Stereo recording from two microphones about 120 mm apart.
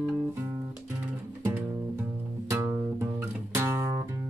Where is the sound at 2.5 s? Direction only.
25° right (ahead or behind).